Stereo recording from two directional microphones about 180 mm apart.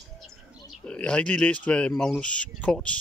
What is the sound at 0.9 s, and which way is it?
Speech, 5° left (ahead or behind).